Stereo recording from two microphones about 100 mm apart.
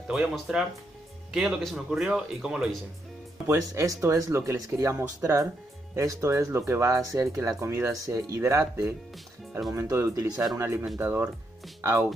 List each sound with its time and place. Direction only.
0.1 s speech: 5° right (ahead or behind)
3.4 s speech: 30° right (ahead or behind)
9.8 s speech: 30° right (ahead or behind)
10.3 s speech: 5° right (ahead or behind)
10.6 s speech: 25° right (ahead or behind)